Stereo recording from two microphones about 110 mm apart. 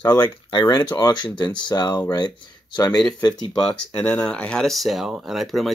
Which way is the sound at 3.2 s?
45° left (ahead or behind).